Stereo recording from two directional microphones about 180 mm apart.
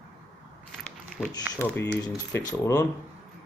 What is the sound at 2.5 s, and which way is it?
Speech, 15° left (ahead or behind).